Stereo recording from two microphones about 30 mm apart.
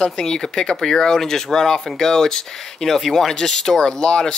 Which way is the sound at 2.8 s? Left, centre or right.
Centre.